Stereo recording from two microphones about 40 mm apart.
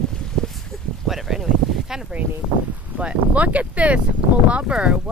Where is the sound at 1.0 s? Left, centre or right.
Centre.